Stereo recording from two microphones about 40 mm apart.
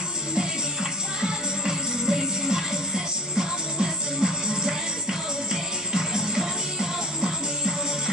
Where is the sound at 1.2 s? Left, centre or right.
Centre.